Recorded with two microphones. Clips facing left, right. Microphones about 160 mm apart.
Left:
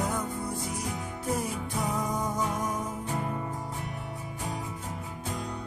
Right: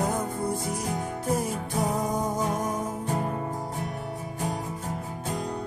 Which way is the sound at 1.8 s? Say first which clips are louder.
Right 4 dB; 40° right (ahead or behind).